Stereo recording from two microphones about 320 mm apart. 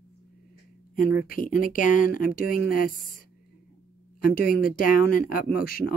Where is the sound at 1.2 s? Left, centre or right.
Left.